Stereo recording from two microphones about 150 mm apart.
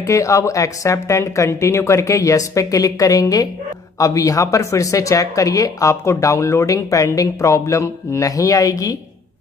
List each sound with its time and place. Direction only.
0.0 s speech: 20° left (ahead or behind)